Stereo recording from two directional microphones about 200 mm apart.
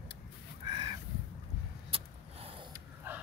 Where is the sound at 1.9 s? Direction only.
25° right (ahead or behind).